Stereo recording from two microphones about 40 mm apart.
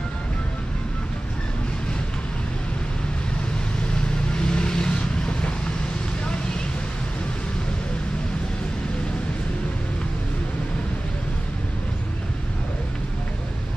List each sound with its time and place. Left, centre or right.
4.3 s vehicle: left